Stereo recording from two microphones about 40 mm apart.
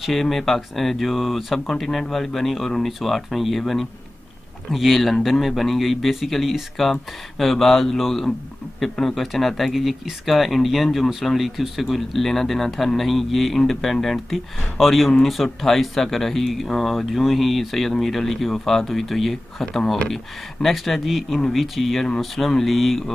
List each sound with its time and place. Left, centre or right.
0.0 s speech: centre
11.9 s speech: centre
14.3 s speech: centre
19.6 s speech: centre
20.6 s speech: centre